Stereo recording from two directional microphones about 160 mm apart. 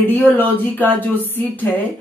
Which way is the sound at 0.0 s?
10° left (ahead or behind).